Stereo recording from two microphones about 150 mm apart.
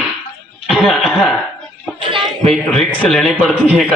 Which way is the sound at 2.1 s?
45° right (ahead or behind).